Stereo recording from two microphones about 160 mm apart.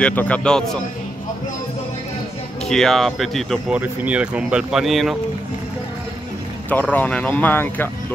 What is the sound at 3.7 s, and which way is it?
Speech, 10° right (ahead or behind).